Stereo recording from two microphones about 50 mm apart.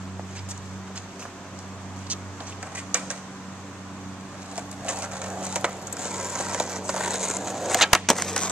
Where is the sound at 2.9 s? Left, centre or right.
Right.